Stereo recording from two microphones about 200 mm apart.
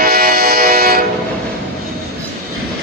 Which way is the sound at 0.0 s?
50° right (ahead or behind).